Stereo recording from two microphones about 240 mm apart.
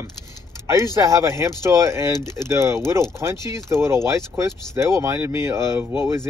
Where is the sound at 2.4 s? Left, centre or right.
Centre.